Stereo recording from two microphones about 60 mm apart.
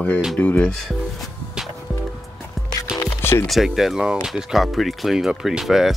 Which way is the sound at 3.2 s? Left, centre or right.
Left.